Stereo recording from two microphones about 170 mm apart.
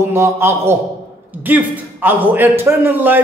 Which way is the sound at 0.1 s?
15° right (ahead or behind).